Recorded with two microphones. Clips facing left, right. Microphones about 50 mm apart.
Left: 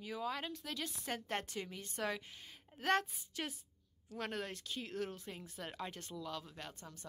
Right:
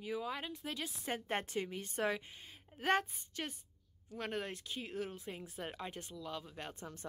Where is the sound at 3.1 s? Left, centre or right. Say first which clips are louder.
Even; centre.